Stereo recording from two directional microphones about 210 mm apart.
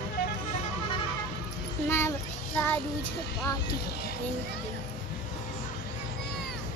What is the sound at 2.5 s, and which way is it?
Child singing, 10° left (ahead or behind).